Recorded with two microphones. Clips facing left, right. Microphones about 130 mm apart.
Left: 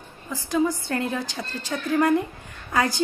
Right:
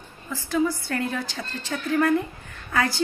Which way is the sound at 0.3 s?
15° left (ahead or behind).